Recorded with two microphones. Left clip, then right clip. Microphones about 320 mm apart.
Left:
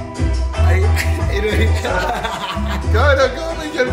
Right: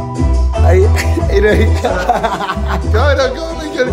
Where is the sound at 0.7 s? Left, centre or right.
Right.